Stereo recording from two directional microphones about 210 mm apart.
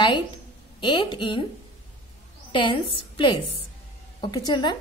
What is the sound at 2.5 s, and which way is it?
A woman's voice, 25° left (ahead or behind).